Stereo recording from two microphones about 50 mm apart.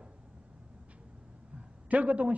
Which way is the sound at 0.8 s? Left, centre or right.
Right.